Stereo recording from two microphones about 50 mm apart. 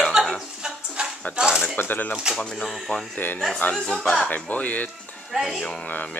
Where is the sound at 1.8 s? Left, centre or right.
Left.